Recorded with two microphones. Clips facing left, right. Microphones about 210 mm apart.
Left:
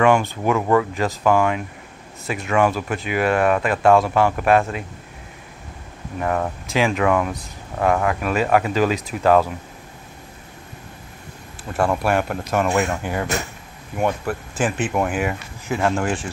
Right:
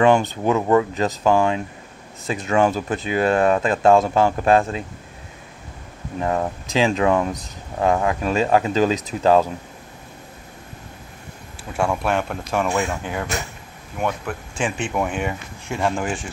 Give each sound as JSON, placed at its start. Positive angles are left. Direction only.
{"t": 0.0, "sound": "speech", "side_deg": -20}
{"t": 6.2, "sound": "speech", "side_deg": -20}
{"t": 11.7, "sound": "speech", "side_deg": 5}